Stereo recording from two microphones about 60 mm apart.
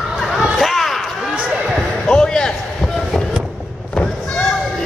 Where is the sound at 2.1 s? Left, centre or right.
Centre.